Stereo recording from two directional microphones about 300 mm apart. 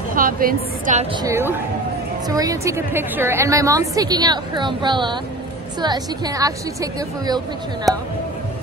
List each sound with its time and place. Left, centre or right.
0.1 s a woman's voice: right
1.2 s a woman's voice: centre
7.9 s speech: centre